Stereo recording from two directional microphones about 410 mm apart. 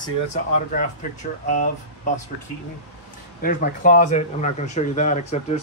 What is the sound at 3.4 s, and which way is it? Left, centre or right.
Speech, centre.